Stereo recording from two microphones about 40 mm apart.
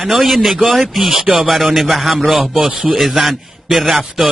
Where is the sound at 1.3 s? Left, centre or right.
Right.